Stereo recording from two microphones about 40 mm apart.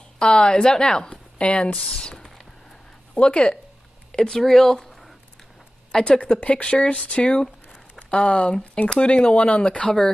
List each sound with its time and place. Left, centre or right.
0.2 s speech: left
3.2 s speech: left
4.1 s speech: centre
5.9 s a sound: centre
6.1 s speech: left
7.4 s a sound: centre
8.1 s speech: left